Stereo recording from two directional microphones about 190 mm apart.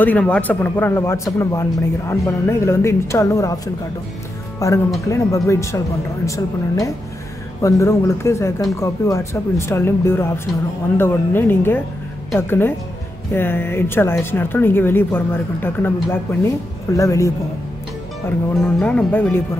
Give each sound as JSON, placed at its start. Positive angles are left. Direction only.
{"t": 0.0, "sound": "speech", "side_deg": 5}
{"t": 18.6, "sound": "speech", "side_deg": 5}